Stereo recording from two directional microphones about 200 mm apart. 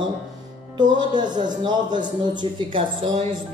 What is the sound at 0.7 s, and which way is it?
Music, 20° right (ahead or behind).